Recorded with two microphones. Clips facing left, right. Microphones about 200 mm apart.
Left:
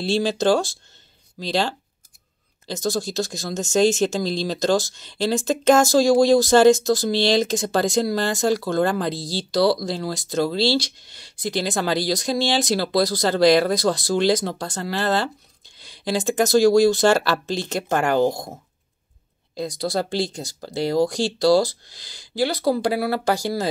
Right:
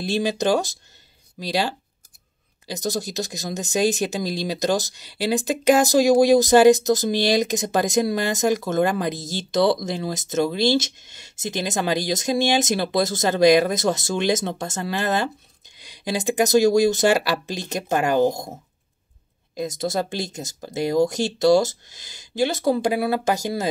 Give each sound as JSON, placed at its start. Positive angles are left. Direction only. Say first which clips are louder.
{"t": 0.0, "sound": "speech", "louder": "left 2 dB", "side_deg": -15}
{"t": 19.5, "sound": "speech", "louder": "even", "side_deg": -20}